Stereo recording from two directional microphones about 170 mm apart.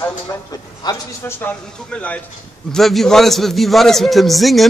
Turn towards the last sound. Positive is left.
turn(degrees=0)  # may be behind; listen again after turning